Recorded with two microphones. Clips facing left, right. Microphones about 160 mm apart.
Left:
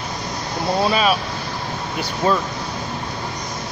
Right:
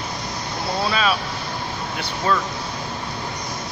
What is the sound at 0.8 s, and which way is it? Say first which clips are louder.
Speech: left 3 dB; 15° left (ahead or behind).